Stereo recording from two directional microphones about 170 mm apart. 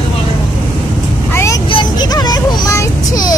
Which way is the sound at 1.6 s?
25° left (ahead or behind).